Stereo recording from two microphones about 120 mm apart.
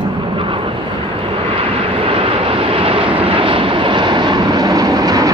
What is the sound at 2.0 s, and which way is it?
Vehicle, 50° right (ahead or behind).